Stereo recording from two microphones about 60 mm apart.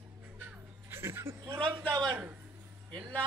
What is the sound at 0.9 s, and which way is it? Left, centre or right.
Speech, right.